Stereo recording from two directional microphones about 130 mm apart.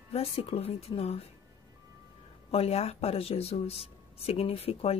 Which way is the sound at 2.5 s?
50° left (ahead or behind).